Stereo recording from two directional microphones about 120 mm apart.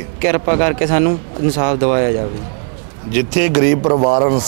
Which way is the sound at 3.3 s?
15° right (ahead or behind).